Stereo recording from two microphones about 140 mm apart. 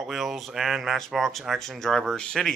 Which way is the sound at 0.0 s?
Centre (ahead or behind).